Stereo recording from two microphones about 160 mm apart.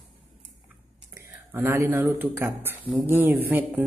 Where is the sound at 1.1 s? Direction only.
15° right (ahead or behind).